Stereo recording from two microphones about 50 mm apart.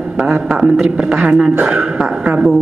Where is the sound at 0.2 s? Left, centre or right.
Centre.